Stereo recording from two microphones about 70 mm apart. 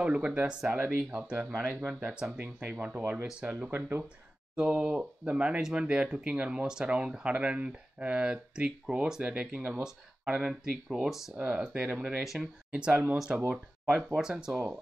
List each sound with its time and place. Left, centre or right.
0.0 s speech: centre
2.0 s speech: centre
4.6 s speech: centre
11.3 s speech: centre
12.2 s speech: centre
12.7 s speech: centre
13.4 s speech: right
13.9 s speech: centre